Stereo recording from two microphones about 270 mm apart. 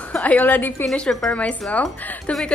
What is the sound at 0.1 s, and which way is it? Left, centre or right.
A woman's voice, centre.